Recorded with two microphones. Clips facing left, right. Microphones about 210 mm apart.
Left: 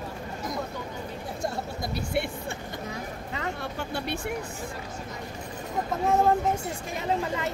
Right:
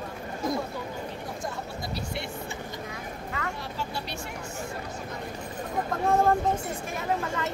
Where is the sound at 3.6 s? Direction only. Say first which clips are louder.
Left 3 dB; 55° left (ahead or behind).